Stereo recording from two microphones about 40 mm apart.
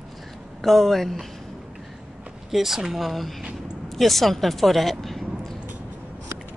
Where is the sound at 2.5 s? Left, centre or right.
Centre.